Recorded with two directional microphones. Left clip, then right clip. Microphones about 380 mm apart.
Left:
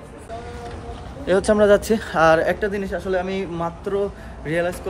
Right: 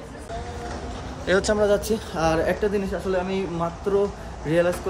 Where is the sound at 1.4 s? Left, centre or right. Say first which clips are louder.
Left 6 dB; left.